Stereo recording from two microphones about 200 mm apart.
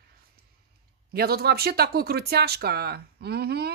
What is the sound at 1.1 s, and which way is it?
A woman's voice, 50° right (ahead or behind).